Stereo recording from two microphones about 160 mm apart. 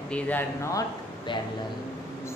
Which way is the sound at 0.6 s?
20° left (ahead or behind).